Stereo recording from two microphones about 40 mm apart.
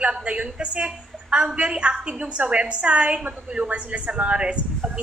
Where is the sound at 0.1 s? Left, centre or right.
Right.